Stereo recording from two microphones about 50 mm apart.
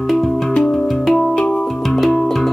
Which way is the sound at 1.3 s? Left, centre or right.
Centre.